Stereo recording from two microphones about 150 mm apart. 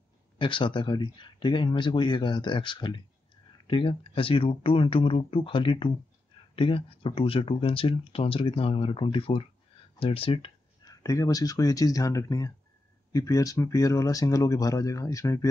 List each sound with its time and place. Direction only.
0.4 s speech: 35° left (ahead or behind)
10.8 s speech: 25° left (ahead or behind)